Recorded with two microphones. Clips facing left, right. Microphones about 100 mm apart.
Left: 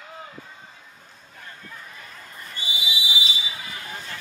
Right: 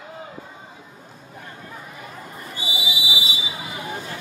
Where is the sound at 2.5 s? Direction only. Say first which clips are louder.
Right 2 dB; 15° right (ahead or behind).